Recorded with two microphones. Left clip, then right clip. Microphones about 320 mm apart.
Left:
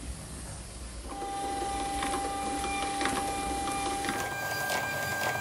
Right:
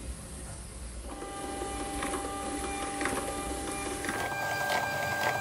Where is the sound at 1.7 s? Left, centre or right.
Centre.